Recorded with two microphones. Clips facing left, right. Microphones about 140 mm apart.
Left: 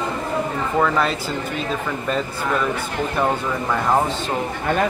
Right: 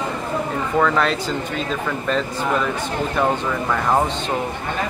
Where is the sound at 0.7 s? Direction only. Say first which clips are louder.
Right 1 dB; 5° left (ahead or behind).